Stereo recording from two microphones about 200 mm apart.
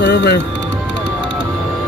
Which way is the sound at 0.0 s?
60° left (ahead or behind).